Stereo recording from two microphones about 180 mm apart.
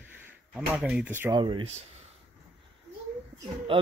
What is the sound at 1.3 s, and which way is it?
Speech, 25° right (ahead or behind).